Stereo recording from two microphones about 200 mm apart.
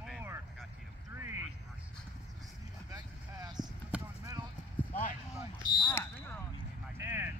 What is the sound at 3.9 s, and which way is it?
Basketball bounce, 15° right (ahead or behind).